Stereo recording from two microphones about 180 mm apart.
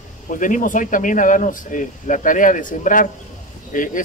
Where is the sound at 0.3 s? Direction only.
45° left (ahead or behind).